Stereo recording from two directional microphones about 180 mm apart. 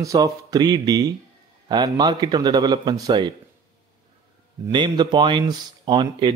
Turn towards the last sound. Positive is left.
turn(degrees=-25)  # may be behind; listen again after turning